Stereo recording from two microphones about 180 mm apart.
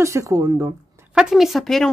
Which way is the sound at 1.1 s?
Centre (ahead or behind).